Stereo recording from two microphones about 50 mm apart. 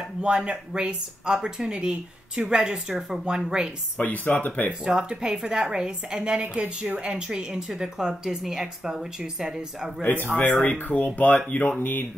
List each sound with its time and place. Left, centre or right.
0.0 s a woman's voice: centre
4.0 s speech: left
4.8 s a woman's voice: centre
10.2 s speech: left